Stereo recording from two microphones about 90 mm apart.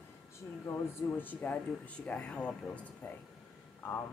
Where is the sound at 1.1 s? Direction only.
20° left (ahead or behind).